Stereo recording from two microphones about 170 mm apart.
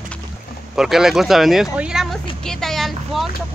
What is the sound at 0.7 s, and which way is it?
Speech, centre (ahead or behind).